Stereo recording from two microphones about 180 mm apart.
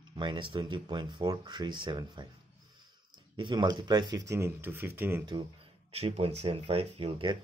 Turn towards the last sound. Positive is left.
turn(degrees=-25)  # may be behind; listen again after turning